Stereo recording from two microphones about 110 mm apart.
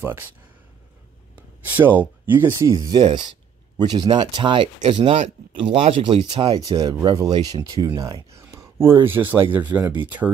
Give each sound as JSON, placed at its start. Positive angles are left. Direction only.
{"t": 0.0, "sound": "speech", "side_deg": -20}
{"t": 1.3, "sound": "speech", "side_deg": -15}
{"t": 6.6, "sound": "speech", "side_deg": -35}